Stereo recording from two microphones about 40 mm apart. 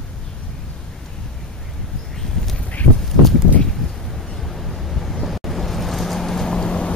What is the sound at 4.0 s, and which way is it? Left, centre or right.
Vehicle, centre.